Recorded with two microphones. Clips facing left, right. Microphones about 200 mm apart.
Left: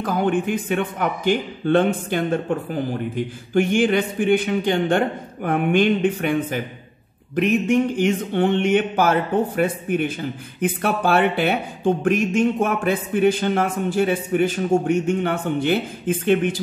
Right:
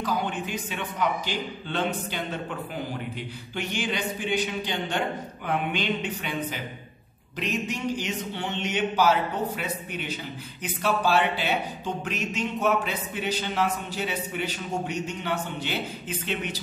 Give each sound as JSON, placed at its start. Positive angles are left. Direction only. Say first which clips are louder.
{"t": 0.0, "sound": "speech", "louder": "left 8 dB", "side_deg": 55}